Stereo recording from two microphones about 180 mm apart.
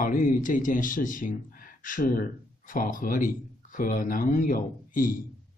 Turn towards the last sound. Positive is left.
turn(degrees=50)  # may be behind; listen again after turning